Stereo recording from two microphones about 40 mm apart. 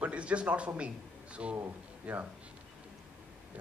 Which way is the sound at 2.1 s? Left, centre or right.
Right.